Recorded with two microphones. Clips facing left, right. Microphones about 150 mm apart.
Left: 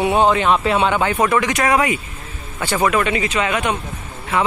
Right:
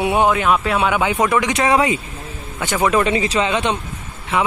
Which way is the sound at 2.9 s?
30° right (ahead or behind).